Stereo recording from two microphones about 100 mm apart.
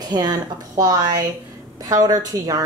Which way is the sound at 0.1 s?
45° right (ahead or behind).